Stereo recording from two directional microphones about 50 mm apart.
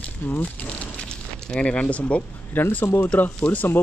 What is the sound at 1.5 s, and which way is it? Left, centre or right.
Speech, left.